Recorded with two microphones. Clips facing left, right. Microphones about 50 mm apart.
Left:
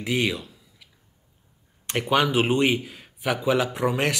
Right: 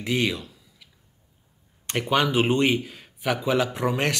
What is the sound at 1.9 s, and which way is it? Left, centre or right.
Speech, centre.